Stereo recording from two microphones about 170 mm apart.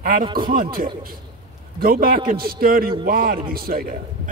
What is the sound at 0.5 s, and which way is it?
Speech, 55° right (ahead or behind).